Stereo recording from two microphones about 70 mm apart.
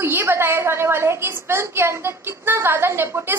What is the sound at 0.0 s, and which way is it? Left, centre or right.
A woman's voice, right.